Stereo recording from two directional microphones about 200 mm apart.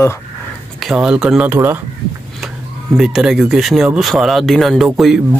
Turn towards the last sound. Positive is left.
turn(degrees=-5)  # may be behind; listen again after turning